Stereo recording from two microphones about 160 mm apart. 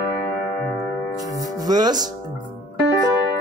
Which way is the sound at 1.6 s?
25° right (ahead or behind).